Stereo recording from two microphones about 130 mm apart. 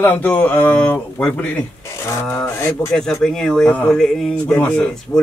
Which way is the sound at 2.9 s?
5° left (ahead or behind).